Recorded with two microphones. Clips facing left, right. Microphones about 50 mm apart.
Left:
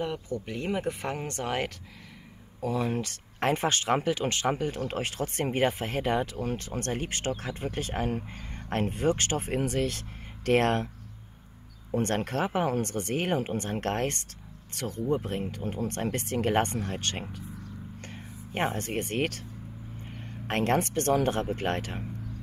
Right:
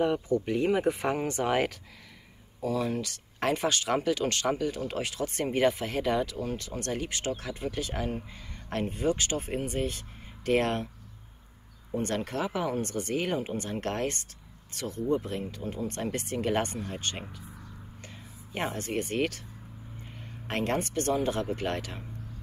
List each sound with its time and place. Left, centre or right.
0.0 s speech: centre
2.6 s speech: left
9.6 s speech: left
11.9 s speech: left